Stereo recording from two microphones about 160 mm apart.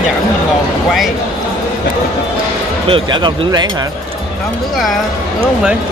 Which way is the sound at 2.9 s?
30° right (ahead or behind).